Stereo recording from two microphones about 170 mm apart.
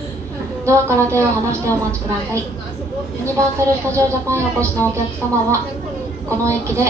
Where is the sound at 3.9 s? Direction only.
15° right (ahead or behind).